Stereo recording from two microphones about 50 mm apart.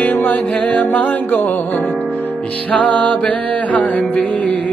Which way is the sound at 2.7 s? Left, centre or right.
Left.